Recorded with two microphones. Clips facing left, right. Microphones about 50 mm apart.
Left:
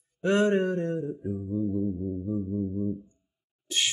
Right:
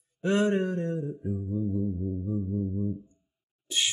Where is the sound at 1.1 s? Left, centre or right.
Centre.